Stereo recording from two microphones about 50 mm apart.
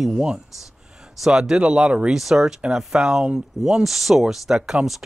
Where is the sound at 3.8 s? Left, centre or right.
Centre.